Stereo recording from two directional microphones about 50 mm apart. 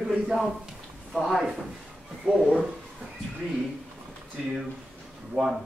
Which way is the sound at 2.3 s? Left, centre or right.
Centre.